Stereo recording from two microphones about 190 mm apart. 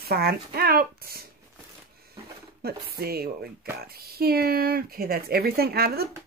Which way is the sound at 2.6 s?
55° right (ahead or behind).